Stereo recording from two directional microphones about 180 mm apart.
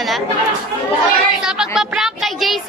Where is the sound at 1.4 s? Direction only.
5° right (ahead or behind).